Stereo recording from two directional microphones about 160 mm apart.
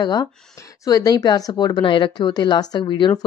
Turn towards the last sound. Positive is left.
turn(degrees=30)  # may be behind; listen again after turning